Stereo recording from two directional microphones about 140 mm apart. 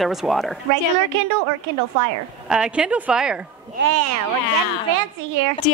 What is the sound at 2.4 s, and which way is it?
Speech, 5° right (ahead or behind).